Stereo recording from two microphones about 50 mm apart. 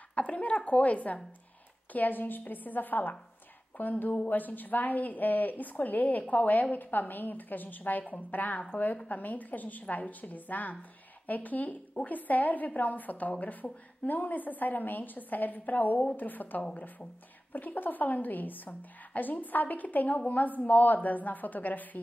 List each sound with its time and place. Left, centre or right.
0.1 s a woman's voice: left